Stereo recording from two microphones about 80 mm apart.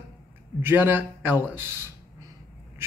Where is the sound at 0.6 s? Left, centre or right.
Right.